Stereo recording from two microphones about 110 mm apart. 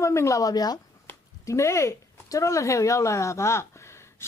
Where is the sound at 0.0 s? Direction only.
25° left (ahead or behind).